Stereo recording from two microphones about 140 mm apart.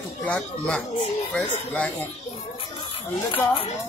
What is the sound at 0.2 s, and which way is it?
Speech, 10° left (ahead or behind).